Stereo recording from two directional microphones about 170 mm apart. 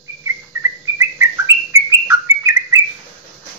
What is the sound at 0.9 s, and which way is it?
Bird, 15° right (ahead or behind).